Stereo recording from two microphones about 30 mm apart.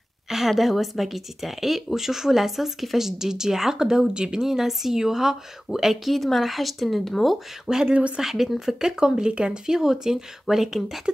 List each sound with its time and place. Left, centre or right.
0.5 s a woman's voice: centre
6.0 s speech: centre
7.7 s speech: right
8.2 s a woman's voice: centre; by 9.8 s right
9.8 s a woman's voice: centre